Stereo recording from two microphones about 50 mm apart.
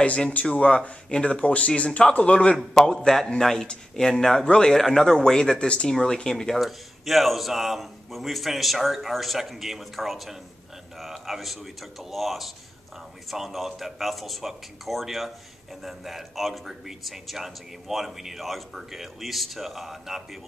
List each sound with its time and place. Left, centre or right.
0.3 s speech: left
2.7 s a man's voice: centre